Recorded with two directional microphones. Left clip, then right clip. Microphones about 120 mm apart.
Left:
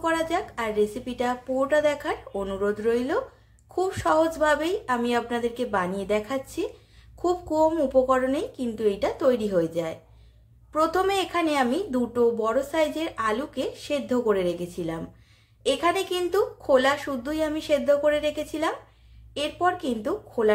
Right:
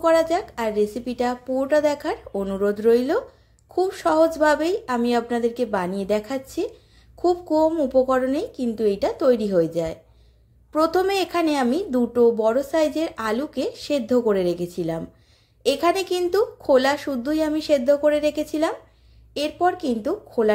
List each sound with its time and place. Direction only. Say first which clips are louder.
0.0 s a woman's voice: right 7 dB; 45° right (ahead or behind)
3.7 s a woman's voice: right 3 dB; 35° right (ahead or behind)